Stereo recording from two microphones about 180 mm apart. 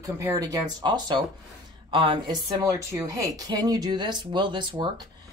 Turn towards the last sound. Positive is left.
turn(degrees=-25)  # may be behind; listen again after turning